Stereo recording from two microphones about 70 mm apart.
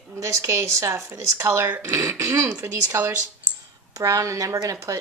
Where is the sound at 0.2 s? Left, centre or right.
Right.